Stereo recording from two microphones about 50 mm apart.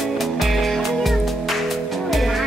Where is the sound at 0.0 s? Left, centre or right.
Centre.